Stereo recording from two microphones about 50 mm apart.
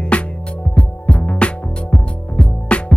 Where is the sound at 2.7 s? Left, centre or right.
Left.